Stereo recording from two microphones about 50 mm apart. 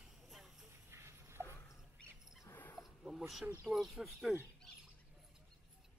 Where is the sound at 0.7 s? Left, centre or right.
Right.